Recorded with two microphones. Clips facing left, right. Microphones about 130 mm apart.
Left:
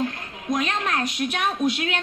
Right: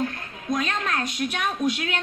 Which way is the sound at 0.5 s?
20° left (ahead or behind).